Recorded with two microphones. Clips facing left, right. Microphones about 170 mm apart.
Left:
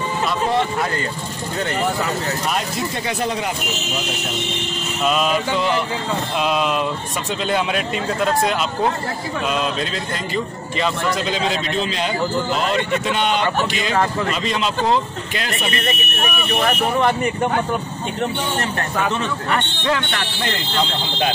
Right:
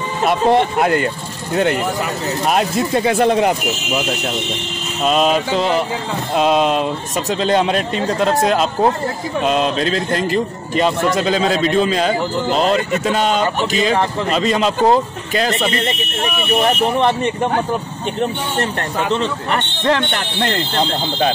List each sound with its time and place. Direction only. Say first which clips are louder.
0.2 s speech: right 7 dB; 60° right (ahead or behind)
2.5 s speech: right 7 dB; 55° right (ahead or behind)
5.0 s a man's voice: right 4 dB; 35° right (ahead or behind)
9.5 s a man's voice: right 7 dB; 45° right (ahead or behind)
11.1 s a man's voice: right 5 dB; 45° right (ahead or behind); by 17.5 s 25° right (ahead or behind)